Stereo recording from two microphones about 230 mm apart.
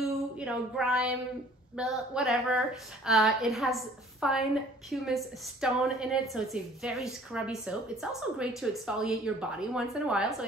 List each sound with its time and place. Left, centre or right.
0.4 s a woman's voice: centre